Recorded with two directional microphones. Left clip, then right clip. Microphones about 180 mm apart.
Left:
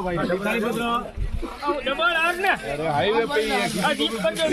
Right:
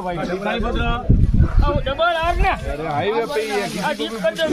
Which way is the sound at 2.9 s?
55° right (ahead or behind).